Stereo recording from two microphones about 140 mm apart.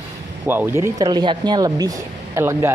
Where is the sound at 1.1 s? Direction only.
30° right (ahead or behind).